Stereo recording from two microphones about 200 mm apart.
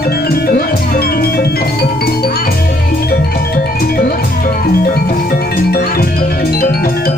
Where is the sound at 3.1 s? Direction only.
50° left (ahead or behind).